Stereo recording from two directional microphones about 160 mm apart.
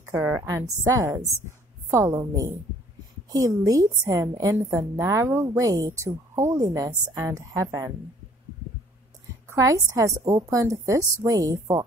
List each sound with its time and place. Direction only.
0.0 s a woman's voice: 15° right (ahead or behind)
9.5 s a woman's voice: 20° right (ahead or behind)